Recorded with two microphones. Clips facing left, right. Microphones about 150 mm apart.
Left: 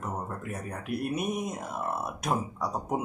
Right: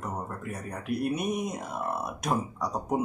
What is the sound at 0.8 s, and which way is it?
Speech, centre (ahead or behind).